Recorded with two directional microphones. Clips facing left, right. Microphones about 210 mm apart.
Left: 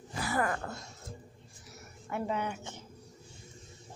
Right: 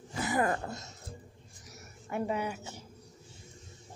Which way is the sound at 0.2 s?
25° right (ahead or behind).